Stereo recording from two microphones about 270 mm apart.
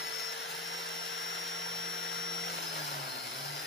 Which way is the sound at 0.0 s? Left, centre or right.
Left.